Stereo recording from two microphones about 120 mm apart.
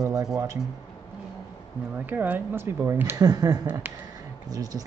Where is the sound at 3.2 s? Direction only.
30° right (ahead or behind).